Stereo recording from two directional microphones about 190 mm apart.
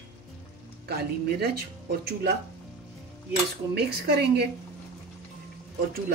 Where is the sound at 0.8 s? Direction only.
55° right (ahead or behind).